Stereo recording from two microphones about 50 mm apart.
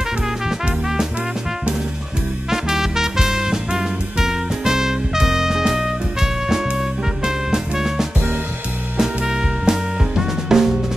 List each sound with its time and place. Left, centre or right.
2.5 s music: centre
7.2 s music: centre
8.9 s drum kit: centre